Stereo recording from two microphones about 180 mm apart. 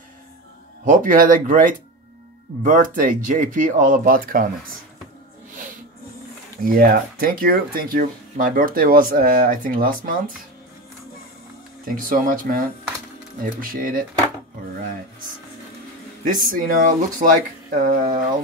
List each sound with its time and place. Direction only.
0.8 s speech: 50° right (ahead or behind)
6.6 s speech: 55° right (ahead or behind)
12.0 s speech: 50° right (ahead or behind)
16.3 s speech: 50° right (ahead or behind)